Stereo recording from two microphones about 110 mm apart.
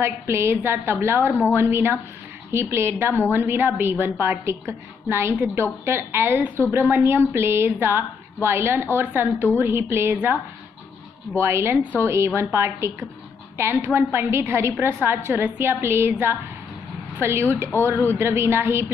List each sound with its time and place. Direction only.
0.0 s a woman's voice: 25° right (ahead or behind)